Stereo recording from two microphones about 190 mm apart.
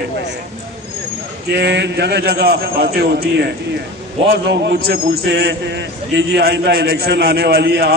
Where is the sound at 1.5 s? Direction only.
65° right (ahead or behind).